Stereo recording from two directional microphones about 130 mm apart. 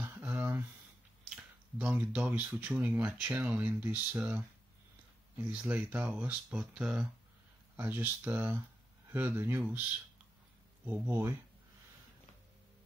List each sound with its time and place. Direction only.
0.0 s a sound: 15° right (ahead or behind)
1.3 s speech: 10° right (ahead or behind)
5.4 s speech: 10° right (ahead or behind)
10.9 s speech: 15° right (ahead or behind)